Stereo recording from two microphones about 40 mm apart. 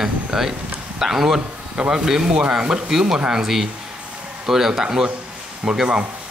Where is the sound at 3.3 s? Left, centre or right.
Centre.